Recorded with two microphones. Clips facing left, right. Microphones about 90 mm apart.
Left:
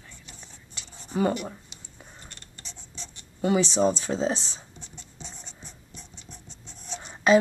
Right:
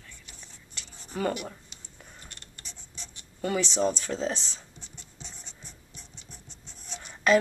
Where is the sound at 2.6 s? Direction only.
5° right (ahead or behind).